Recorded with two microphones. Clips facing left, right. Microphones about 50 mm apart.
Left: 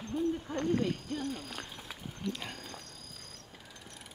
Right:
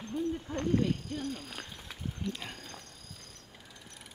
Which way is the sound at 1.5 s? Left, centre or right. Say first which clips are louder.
Left 1 dB; centre.